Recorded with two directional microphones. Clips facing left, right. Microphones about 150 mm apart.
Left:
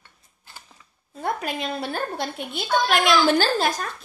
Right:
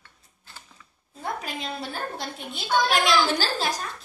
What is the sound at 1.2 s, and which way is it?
A woman's voice, 60° left (ahead or behind).